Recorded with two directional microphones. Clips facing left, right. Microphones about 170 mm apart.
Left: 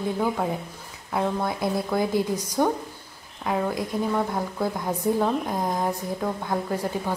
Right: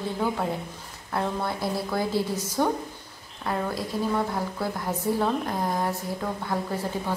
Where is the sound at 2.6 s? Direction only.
10° left (ahead or behind).